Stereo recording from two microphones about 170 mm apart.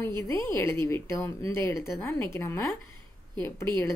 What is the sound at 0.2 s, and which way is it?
Speech, 15° left (ahead or behind).